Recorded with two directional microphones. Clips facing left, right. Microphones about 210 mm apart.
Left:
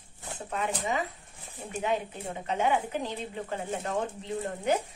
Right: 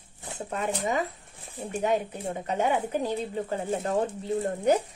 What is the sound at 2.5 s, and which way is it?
A woman's voice, 40° right (ahead or behind).